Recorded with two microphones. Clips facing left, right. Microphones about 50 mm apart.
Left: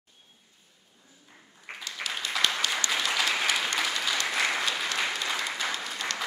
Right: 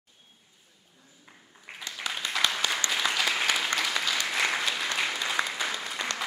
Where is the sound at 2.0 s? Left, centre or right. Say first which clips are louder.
Even; left.